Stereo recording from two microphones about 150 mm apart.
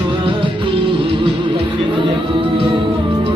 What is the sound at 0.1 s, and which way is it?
Music, 35° right (ahead or behind).